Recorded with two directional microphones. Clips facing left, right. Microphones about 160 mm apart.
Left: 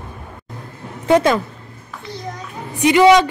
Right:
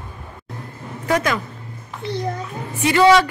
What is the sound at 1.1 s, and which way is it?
Speech, 25° left (ahead or behind).